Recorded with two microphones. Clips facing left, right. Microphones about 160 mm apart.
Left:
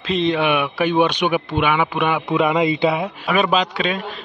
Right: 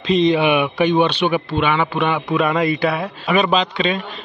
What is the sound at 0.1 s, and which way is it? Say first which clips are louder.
Speech: right 3 dB; centre (ahead or behind).